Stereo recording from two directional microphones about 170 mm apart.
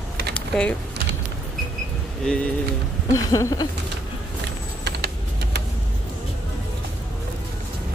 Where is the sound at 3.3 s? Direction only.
20° left (ahead or behind).